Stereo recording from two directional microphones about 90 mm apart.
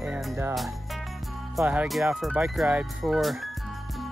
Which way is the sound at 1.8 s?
Centre (ahead or behind).